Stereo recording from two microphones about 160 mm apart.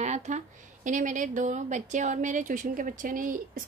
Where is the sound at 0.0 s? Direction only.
45° right (ahead or behind).